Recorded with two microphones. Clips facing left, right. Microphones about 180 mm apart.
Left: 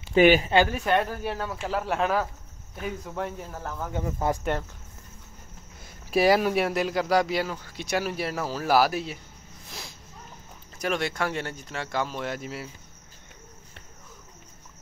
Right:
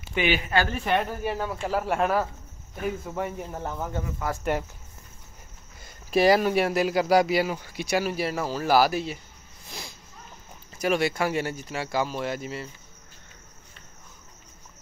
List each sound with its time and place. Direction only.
0.1 s speech: 40° left (ahead or behind)
0.7 s speech: centre (ahead or behind)
3.5 s speech: 20° right (ahead or behind)
4.3 s cricket: 25° left (ahead or behind)
5.8 s speech: 5° left (ahead or behind)
9.7 s a sound: centre (ahead or behind)
10.8 s speech: 5° right (ahead or behind)